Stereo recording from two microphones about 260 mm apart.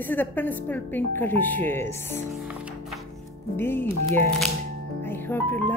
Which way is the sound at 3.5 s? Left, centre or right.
Centre.